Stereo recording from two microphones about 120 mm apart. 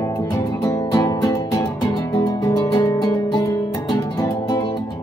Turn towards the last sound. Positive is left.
turn(degrees=35)  # may be behind; listen again after turning